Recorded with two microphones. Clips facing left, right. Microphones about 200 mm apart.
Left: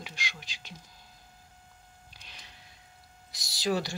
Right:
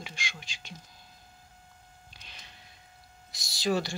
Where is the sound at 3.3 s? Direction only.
40° left (ahead or behind).